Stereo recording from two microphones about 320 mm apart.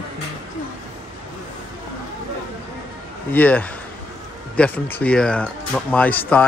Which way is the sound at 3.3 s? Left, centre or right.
Centre.